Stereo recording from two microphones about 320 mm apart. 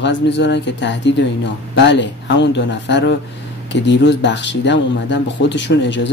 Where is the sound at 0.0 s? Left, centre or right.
Left.